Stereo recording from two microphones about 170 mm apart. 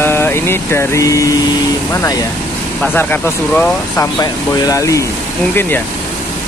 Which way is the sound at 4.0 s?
20° left (ahead or behind).